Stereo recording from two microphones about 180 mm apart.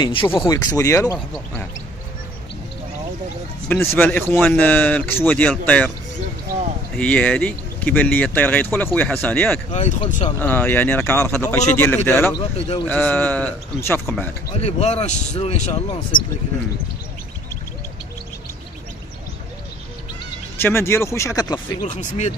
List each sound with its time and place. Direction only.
0.0 s speech: 30° left (ahead or behind)
0.5 s speech: 20° left (ahead or behind)
3.6 s speech: 10° left (ahead or behind)
7.0 s speech: 5° left (ahead or behind)
9.7 s a man's voice: 35° left (ahead or behind)
10.4 s speech: 10° left (ahead or behind)
12.4 s a man's voice: 30° left (ahead or behind)
12.8 s speech: 10° left (ahead or behind)
14.6 s a man's voice: 35° left (ahead or behind)
20.5 s speech: 15° left (ahead or behind)
21.8 s a man's voice: 40° left (ahead or behind)